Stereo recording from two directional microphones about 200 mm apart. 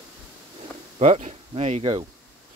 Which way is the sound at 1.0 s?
35° right (ahead or behind).